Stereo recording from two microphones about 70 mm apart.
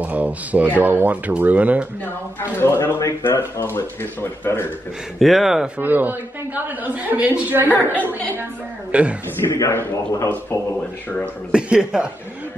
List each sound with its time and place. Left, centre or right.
0.0 s a woman's voice: right
2.6 s speech: left
3.0 s speech: left
3.3 s speech: left
5.2 s speech: centre
5.8 s a woman's voice: right
8.9 s speech: centre
9.5 s a man's voice: left
11.5 s speech: centre